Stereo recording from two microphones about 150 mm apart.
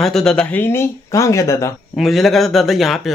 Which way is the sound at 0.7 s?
20° left (ahead or behind).